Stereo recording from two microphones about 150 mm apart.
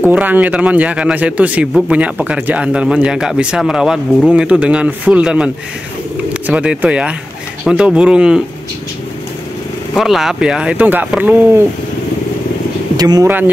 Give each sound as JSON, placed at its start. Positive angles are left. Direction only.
{"t": 0.0, "sound": "a man's voice", "side_deg": -10}
{"t": 9.9, "sound": "a man's voice", "side_deg": 0}
{"t": 12.9, "sound": "speech", "side_deg": -25}